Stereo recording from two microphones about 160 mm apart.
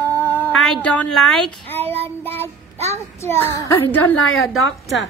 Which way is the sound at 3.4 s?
20° left (ahead or behind).